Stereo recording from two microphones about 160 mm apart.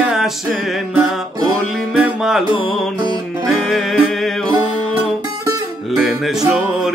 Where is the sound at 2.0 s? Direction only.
5° right (ahead or behind).